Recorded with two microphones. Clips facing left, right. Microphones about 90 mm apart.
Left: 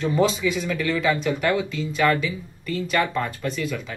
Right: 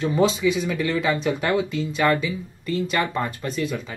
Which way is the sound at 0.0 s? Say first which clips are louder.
Right 1 dB; 15° right (ahead or behind).